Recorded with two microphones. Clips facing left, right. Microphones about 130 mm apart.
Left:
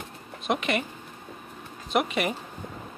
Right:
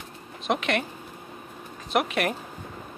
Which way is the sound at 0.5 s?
Centre (ahead or behind).